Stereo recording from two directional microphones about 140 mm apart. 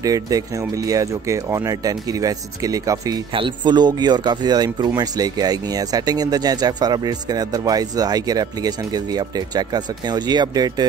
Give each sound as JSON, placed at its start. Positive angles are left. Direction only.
{"t": 0.0, "sound": "speech", "side_deg": -25}